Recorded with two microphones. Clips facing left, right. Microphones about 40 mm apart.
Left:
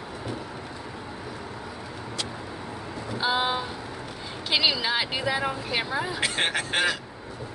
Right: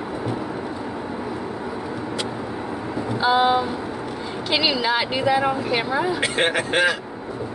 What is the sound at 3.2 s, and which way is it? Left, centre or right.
A woman's voice, centre.